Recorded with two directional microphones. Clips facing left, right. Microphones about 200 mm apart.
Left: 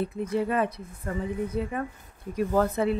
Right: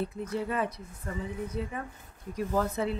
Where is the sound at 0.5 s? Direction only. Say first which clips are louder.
Left 5 dB; 60° left (ahead or behind).